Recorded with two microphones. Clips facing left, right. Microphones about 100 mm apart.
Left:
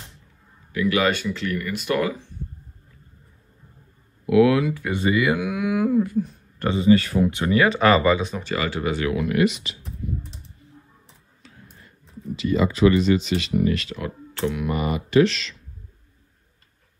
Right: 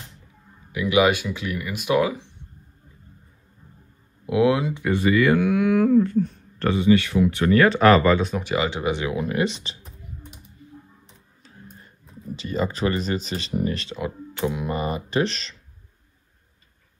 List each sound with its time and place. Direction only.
0.7 s speech: 15° right (ahead or behind)
4.3 s speech: 25° right (ahead or behind)
4.9 s speech: 20° left (ahead or behind)
5.3 s speech: 5° left (ahead or behind)
6.7 s speech: 35° left (ahead or behind)
7.2 s speech: 20° left (ahead or behind)
7.5 s speech: 5° left (ahead or behind)
8.4 s speech: 15° right (ahead or behind)
11.4 s tick-tock: 35° right (ahead or behind)
12.4 s speech: 35° right (ahead or behind)
13.9 s speech: 20° right (ahead or behind); by 15.5 s 35° right (ahead or behind)